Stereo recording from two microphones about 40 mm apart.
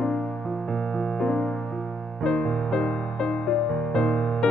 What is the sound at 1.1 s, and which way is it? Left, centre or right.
Music, centre.